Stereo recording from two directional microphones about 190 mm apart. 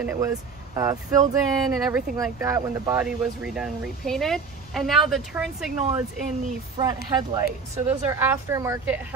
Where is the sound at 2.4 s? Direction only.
15° right (ahead or behind).